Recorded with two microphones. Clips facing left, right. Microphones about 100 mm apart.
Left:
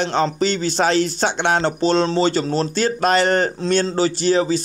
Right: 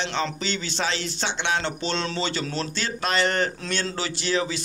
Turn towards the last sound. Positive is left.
turn(degrees=40)  # may be behind; listen again after turning